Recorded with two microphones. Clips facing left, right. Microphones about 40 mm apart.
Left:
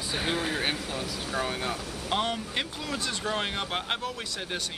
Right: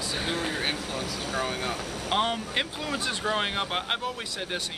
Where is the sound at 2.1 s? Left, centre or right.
Centre.